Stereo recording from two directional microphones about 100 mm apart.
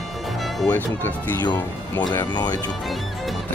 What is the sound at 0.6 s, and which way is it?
Speech, 20° left (ahead or behind).